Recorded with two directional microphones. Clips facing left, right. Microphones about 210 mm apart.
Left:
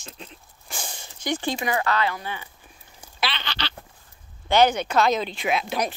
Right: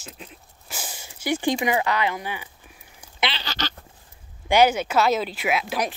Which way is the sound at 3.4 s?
45° right (ahead or behind).